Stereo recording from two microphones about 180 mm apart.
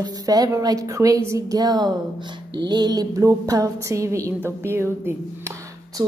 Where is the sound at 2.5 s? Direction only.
25° right (ahead or behind).